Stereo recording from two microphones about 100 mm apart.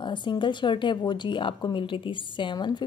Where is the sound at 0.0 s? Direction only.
50° left (ahead or behind).